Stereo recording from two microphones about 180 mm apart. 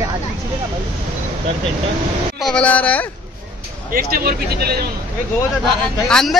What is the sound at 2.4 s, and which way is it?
Speech, 5° left (ahead or behind).